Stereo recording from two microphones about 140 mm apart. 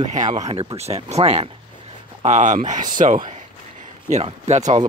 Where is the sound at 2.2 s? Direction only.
60° right (ahead or behind).